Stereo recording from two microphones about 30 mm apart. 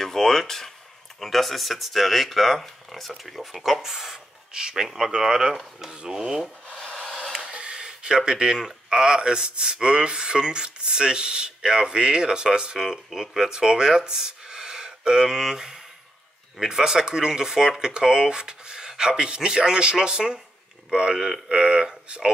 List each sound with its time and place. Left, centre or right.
0.0 s a sound: centre
1.2 s speech: centre
3.8 s speech: centre
4.5 s speech: right
6.0 s speech: right
7.5 s a sound: right
8.3 s speech: right
13.1 s speech: centre
13.5 s speech: right
21.5 s a sound: right